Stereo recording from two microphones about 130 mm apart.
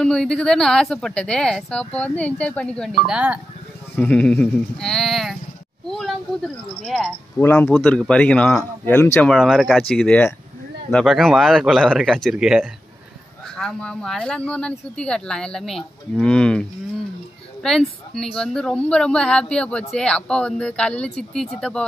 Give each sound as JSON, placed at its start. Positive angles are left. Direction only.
{"t": 0.0, "sound": "a woman's voice", "side_deg": 5}
{"t": 3.1, "sound": "speech", "side_deg": -10}
{"t": 3.9, "sound": "a woman's voice", "side_deg": 10}
{"t": 7.3, "sound": "speech", "side_deg": 15}
{"t": 9.4, "sound": "a woman's voice", "side_deg": 0}
{"t": 13.6, "sound": "speech", "side_deg": 5}
{"t": 17.6, "sound": "a woman's voice", "side_deg": 5}